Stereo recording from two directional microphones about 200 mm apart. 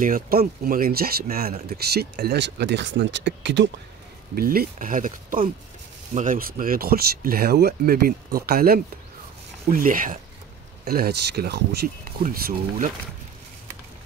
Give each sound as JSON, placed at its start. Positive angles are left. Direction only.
{"t": 0.0, "sound": "speech", "side_deg": -45}
{"t": 4.4, "sound": "speech", "side_deg": -45}